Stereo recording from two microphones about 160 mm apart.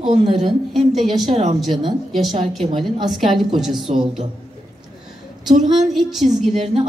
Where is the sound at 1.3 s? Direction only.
40° right (ahead or behind).